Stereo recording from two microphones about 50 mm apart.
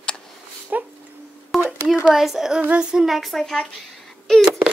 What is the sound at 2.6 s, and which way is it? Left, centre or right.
Speech, right.